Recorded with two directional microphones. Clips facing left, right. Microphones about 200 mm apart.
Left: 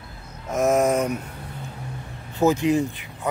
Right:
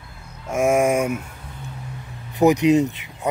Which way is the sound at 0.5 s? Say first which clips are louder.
Right 1 dB; 10° right (ahead or behind).